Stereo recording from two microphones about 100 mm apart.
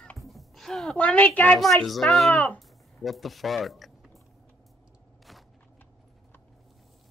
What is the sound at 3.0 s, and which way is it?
Speech, centre (ahead or behind).